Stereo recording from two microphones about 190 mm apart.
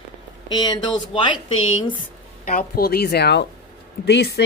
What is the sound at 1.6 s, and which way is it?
Speech, 90° left.